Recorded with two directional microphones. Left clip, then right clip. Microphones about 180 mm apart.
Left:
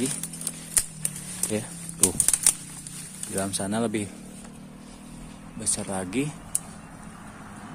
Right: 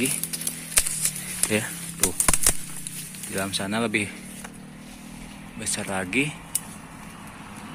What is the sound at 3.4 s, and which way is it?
Speech, 20° left (ahead or behind).